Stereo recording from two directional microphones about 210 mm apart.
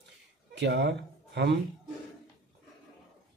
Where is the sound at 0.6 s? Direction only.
55° right (ahead or behind).